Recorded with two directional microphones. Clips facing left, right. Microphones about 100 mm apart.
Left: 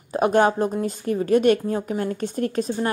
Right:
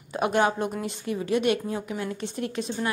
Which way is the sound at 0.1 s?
40° left (ahead or behind).